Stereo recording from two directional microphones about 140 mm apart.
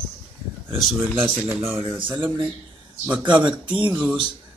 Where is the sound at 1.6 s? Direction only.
20° right (ahead or behind).